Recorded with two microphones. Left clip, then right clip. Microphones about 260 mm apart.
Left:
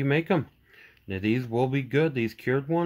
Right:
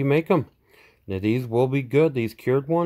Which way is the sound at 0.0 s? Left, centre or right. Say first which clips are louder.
Right 5 dB; right.